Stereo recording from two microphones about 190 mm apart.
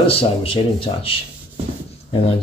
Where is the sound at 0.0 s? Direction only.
30° left (ahead or behind).